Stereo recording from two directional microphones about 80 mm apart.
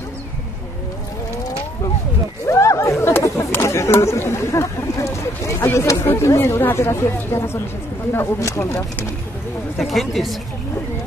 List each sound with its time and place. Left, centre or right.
2.4 s a sound: left
3.0 s speech: left
9.8 s a woman's voice: centre